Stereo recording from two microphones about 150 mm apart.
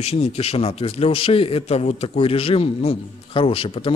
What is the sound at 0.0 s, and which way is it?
A man's voice, 45° left (ahead or behind).